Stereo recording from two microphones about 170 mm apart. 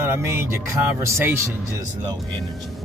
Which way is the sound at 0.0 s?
15° right (ahead or behind).